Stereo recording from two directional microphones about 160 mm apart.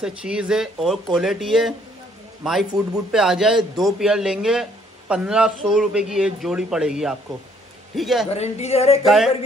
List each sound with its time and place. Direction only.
0.0 s a man's voice: 5° right (ahead or behind)
8.3 s a woman's voice: 40° left (ahead or behind)
9.0 s a man's voice: centre (ahead or behind)